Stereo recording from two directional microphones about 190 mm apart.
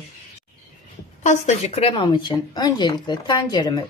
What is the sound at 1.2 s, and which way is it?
Speech, 40° left (ahead or behind).